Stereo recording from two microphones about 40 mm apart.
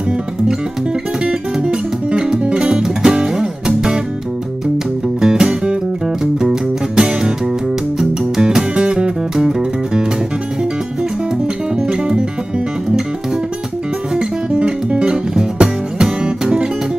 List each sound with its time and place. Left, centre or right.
1.2 s music: right
5.2 s music: centre
11.7 s music: centre
14.1 s music: right